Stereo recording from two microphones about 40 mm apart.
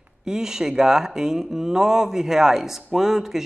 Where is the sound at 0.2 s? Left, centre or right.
Centre.